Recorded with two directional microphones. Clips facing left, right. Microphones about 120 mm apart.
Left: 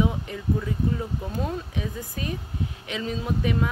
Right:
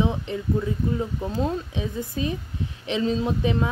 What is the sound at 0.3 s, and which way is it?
Speech, 25° right (ahead or behind).